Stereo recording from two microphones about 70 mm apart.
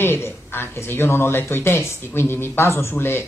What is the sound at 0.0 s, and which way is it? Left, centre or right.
Speech, left.